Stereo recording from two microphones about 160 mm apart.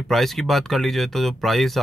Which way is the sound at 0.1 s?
Centre (ahead or behind).